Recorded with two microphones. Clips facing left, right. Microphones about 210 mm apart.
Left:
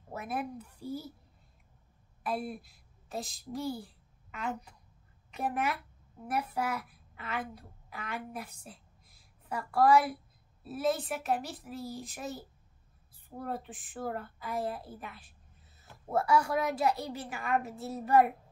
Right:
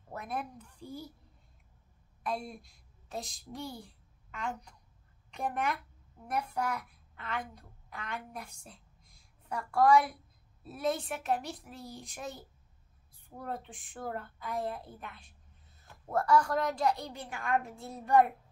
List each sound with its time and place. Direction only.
0.1 s a woman's voice: 5° left (ahead or behind)
2.2 s a woman's voice: 5° left (ahead or behind)